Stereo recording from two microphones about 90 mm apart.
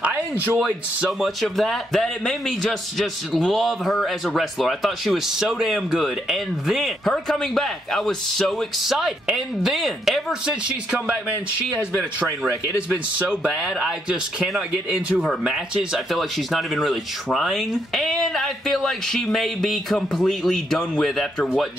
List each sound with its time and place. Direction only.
0.0 s speech: 15° right (ahead or behind)
1.2 s a man's voice: centre (ahead or behind)
12.9 s a man's voice: 10° right (ahead or behind)